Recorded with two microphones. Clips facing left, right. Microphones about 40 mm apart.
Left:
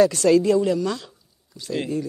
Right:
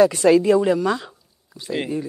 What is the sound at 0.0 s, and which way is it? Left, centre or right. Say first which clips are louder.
Speech: right 2 dB; right.